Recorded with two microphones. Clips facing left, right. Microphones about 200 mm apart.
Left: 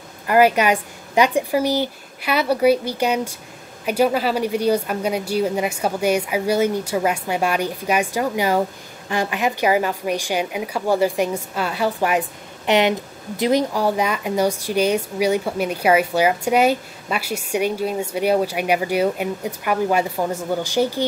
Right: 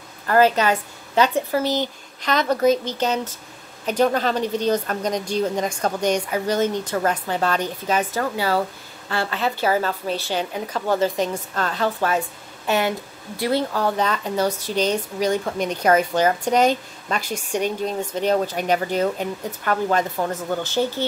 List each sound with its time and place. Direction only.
0.3 s speech: 15° left (ahead or behind)